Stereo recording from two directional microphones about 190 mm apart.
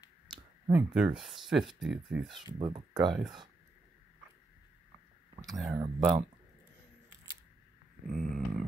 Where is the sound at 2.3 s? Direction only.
25° right (ahead or behind).